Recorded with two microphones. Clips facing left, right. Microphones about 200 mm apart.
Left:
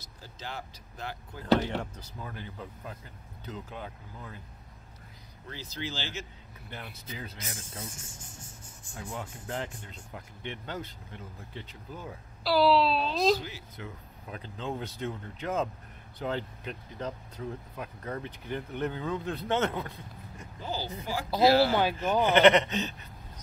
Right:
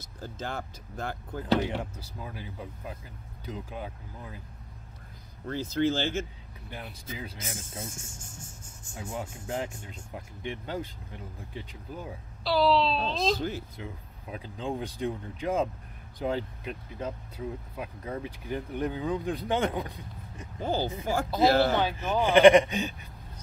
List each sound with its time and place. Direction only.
0.0 s speech: 50° right (ahead or behind)
1.5 s speech: 10° right (ahead or behind)
5.5 s speech: 50° right (ahead or behind)
6.7 s speech: 15° right (ahead or behind)
7.3 s speech: 50° right (ahead or behind)
8.1 s music: 45° right (ahead or behind)
8.9 s speech: 25° right (ahead or behind)
9.2 s speech: 10° right (ahead or behind)
12.4 s speech: 5° left (ahead or behind)
13.4 s speech: 50° right (ahead or behind)
14.3 s speech: 15° right (ahead or behind)
20.5 s speech: 50° right (ahead or behind)
22.1 s speech: 15° right (ahead or behind)